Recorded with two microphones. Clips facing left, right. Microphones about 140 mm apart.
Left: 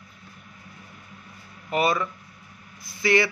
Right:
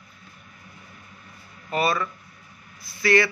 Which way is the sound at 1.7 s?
15° left (ahead or behind).